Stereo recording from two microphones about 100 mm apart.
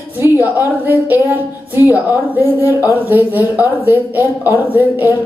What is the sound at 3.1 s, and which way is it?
A woman's voice, 20° right (ahead or behind).